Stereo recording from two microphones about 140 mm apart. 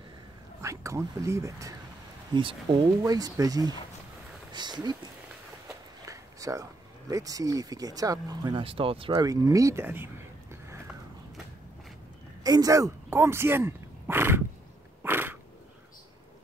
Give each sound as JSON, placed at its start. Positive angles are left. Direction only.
{"t": 0.6, "sound": "speech", "side_deg": -20}
{"t": 2.3, "sound": "speech", "side_deg": -35}
{"t": 6.0, "sound": "speech", "side_deg": -25}
{"t": 8.6, "sound": "speech", "side_deg": -40}
{"t": 9.1, "sound": "speech", "side_deg": -25}
{"t": 12.4, "sound": "speech", "side_deg": -25}
{"t": 15.0, "sound": "a sound", "side_deg": -15}